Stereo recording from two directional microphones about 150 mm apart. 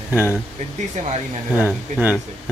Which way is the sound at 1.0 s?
50° right (ahead or behind).